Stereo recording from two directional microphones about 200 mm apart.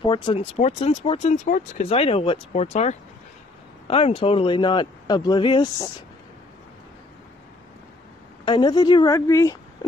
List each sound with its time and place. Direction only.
0.0 s speech: 25° left (ahead or behind)
8.5 s speech: 20° left (ahead or behind)